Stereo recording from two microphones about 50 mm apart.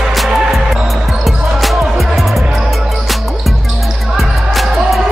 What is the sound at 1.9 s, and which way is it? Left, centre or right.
Music, centre.